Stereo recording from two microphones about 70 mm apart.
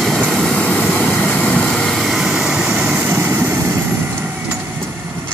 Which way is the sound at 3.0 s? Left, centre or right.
Right.